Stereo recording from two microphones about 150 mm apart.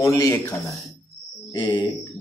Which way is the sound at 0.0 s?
20° left (ahead or behind).